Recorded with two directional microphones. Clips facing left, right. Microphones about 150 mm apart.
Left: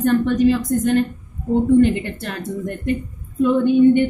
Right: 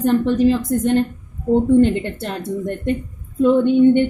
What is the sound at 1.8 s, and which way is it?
Speech, 25° right (ahead or behind).